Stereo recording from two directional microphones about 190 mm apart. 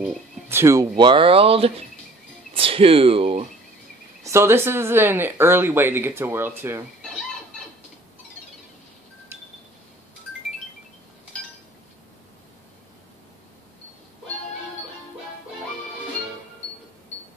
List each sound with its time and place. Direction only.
0.0 s speech: 10° right (ahead or behind); by 3.4 s 30° right (ahead or behind)
4.2 s speech: 15° right (ahead or behind)